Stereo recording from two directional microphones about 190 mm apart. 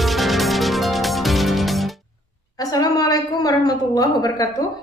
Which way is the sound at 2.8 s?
20° left (ahead or behind).